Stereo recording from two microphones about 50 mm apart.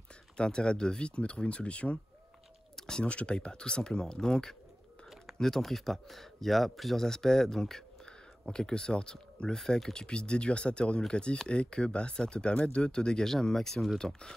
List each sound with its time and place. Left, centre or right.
0.4 s speech: centre
2.7 s a sound: centre
3.1 s speech: left